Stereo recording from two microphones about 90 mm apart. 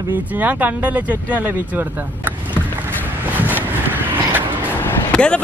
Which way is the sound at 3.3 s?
20° right (ahead or behind).